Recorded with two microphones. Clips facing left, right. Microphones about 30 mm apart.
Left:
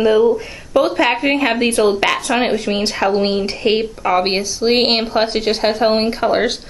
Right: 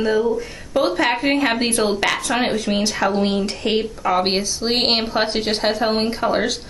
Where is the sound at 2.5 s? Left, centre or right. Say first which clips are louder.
Left 2 dB; left.